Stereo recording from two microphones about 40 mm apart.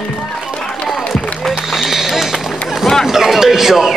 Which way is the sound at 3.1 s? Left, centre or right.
Centre.